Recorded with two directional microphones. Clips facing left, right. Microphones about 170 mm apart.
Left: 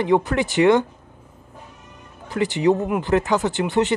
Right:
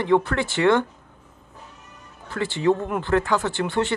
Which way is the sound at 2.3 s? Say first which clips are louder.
Left 3 dB; 15° left (ahead or behind).